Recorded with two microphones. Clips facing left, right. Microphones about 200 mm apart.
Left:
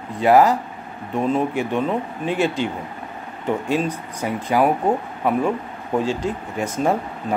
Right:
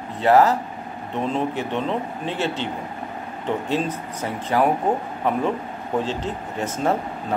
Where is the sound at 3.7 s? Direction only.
10° left (ahead or behind).